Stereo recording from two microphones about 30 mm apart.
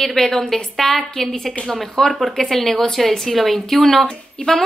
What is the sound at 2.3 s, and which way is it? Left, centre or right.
A woman's voice, centre.